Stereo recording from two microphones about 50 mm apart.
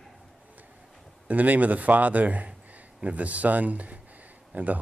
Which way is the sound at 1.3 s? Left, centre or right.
Right.